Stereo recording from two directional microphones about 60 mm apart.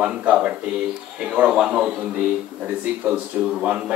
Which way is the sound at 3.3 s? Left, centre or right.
Right.